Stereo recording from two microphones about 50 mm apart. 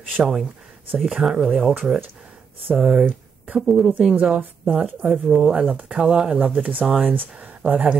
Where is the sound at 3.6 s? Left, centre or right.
Centre.